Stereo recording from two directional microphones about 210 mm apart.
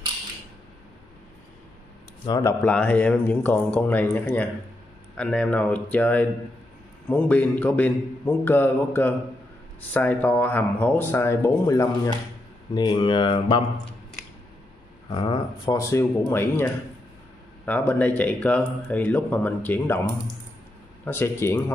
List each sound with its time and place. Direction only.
2.2 s speech: 15° left (ahead or behind)
15.0 s speech: 20° left (ahead or behind)
21.0 s speech: 10° left (ahead or behind)